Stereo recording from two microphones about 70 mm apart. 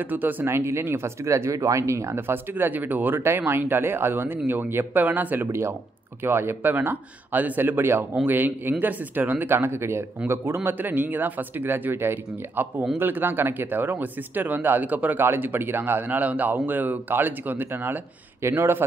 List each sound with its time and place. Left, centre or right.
0.0 s speech: right
0.5 s speech: right
2.1 s speech: right
5.5 s speech: right